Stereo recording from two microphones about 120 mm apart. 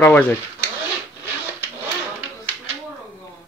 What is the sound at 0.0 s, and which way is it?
Speech, 10° left (ahead or behind).